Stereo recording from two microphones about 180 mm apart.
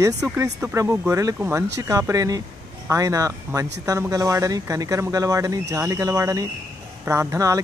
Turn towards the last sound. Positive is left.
turn(degrees=-15)  # may be behind; listen again after turning